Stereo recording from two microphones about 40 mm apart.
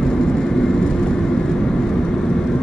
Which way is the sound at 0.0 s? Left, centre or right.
Centre.